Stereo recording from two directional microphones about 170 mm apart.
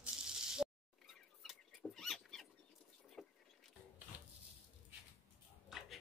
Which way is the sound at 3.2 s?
5° left (ahead or behind).